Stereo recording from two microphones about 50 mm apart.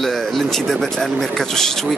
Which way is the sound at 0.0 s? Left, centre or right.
Centre.